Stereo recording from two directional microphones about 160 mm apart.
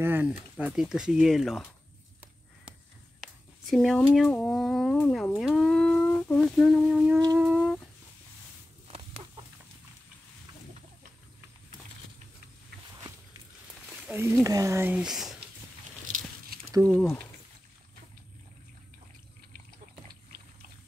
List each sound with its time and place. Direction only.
0.0 s speech: 15° right (ahead or behind)
3.2 s speech: centre (ahead or behind)
5.4 s humming: centre (ahead or behind)
8.8 s chicken: 35° right (ahead or behind)
14.1 s speech: 15° right (ahead or behind)
16.8 s speech: 5° left (ahead or behind)